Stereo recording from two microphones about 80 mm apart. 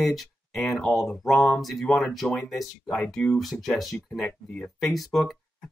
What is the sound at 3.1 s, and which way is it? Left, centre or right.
Speech, centre.